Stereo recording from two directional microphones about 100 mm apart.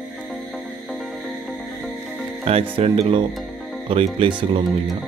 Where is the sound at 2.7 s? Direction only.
80° right; by 4.7 s 55° right (ahead or behind).